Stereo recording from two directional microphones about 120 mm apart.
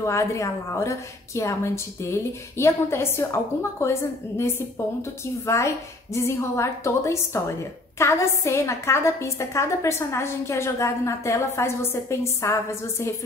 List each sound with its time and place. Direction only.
0.0 s a woman's voice: 25° left (ahead or behind)